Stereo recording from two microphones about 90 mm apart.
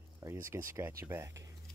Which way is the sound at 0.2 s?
30° right (ahead or behind).